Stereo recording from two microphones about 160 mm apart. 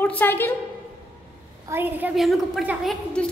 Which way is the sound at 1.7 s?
15° right (ahead or behind).